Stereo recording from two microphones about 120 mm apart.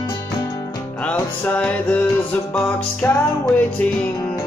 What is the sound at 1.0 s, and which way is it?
Music, 15° left (ahead or behind).